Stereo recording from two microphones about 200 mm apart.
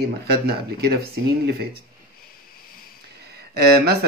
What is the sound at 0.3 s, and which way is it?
Speech, 50° right (ahead or behind).